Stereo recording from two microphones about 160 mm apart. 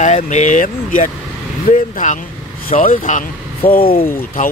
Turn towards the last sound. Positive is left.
turn(degrees=55)  # may be behind; listen again after turning